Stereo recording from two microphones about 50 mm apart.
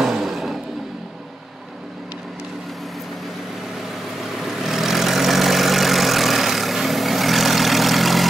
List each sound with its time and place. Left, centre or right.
0.0 s vehicle: centre
4.4 s vehicle: centre